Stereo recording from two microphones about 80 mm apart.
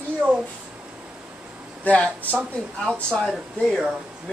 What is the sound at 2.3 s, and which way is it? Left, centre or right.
Speech, centre.